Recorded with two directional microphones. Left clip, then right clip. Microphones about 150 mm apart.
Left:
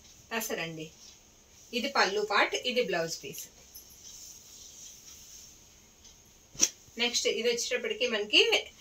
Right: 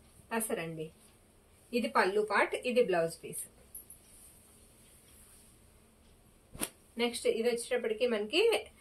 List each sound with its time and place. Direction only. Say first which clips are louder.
0.3 s a woman's voice: left 2 dB; centre (ahead or behind)
1.7 s a woman's voice: left 2 dB; 5° left (ahead or behind)
7.0 s a woman's voice: left 2 dB; centre (ahead or behind)